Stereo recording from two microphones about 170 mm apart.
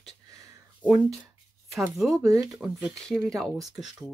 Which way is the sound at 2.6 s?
Centre (ahead or behind).